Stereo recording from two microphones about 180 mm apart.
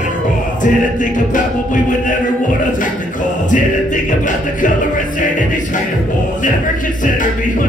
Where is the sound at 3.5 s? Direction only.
45° left (ahead or behind).